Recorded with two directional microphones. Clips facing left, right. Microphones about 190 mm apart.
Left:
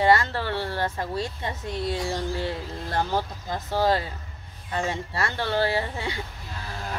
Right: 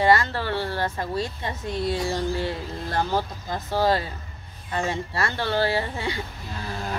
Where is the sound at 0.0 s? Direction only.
20° left (ahead or behind).